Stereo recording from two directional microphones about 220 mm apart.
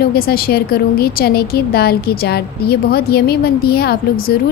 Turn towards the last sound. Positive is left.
turn(degrees=45)  # may be behind; listen again after turning